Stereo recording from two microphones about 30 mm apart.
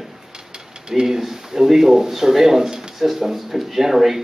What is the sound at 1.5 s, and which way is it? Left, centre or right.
Speech, centre.